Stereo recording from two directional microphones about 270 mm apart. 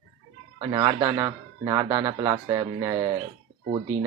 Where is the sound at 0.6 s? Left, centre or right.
Centre.